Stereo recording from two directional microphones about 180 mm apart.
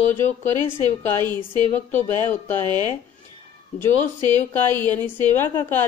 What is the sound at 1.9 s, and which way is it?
Speech, 10° left (ahead or behind).